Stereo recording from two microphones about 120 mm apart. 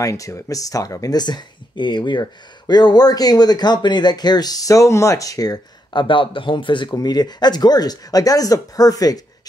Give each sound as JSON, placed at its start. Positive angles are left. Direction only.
{"t": 0.0, "sound": "speech", "side_deg": 25}